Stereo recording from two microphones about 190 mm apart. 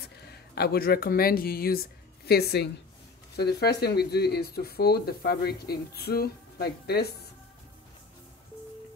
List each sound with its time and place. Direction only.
0.3 s speech: 55° left (ahead or behind)